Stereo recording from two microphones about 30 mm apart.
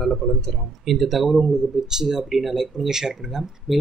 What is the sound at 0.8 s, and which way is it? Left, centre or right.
Speech, centre.